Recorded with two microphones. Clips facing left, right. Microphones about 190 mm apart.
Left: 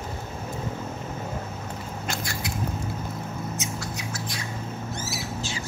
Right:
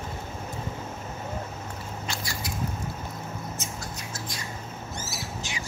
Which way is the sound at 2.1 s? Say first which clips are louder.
Left 4 dB; 55° left (ahead or behind).